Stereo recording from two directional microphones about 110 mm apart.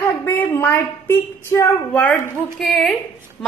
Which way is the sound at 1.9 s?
10° left (ahead or behind).